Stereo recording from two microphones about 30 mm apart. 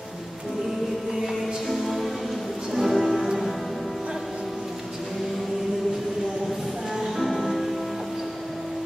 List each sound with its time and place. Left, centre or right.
1.7 s music: centre
7.2 s music: centre